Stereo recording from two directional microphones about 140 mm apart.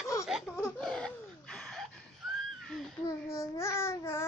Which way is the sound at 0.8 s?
5° left (ahead or behind).